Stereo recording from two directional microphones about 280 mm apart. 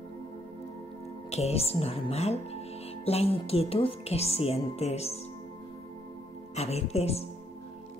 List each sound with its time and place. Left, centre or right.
1.3 s speech: left
6.5 s speech: left